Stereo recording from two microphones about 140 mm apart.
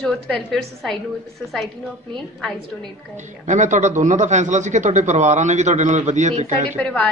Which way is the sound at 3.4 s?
60° right (ahead or behind).